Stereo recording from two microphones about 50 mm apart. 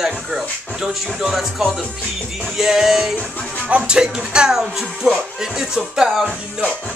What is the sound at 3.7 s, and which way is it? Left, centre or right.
Speech, right.